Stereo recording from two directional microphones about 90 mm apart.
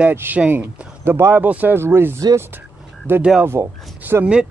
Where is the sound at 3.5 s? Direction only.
25° right (ahead or behind).